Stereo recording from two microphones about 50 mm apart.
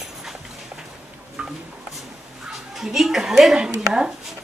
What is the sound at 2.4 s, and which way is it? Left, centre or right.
Speech, centre.